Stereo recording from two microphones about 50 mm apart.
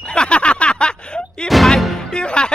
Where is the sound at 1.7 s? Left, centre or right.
Centre.